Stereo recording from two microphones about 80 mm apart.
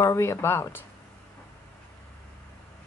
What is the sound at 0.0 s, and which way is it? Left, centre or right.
Speech, left.